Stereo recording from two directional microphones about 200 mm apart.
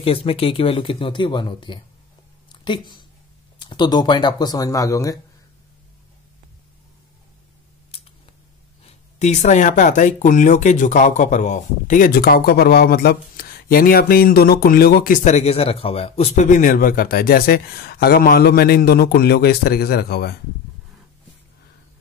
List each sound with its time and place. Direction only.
0.0 s speech: 30° left (ahead or behind)
2.5 s a sound: 25° left (ahead or behind)
3.5 s speech: 20° left (ahead or behind)
8.8 s speech: 35° left (ahead or behind); by 20.3 s 50° left (ahead or behind)